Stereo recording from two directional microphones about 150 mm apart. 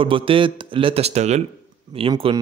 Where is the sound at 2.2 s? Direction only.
35° right (ahead or behind).